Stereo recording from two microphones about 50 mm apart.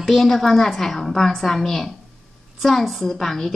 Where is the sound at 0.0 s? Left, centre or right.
Centre.